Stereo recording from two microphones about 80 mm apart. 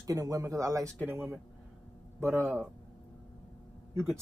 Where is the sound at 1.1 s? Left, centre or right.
Right.